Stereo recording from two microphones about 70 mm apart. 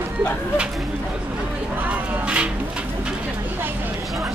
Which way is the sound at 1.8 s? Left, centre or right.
Centre.